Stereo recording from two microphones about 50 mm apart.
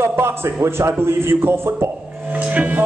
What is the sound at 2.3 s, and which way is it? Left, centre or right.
Speech, right.